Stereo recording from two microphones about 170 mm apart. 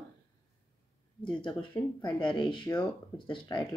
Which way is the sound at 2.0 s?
30° left (ahead or behind).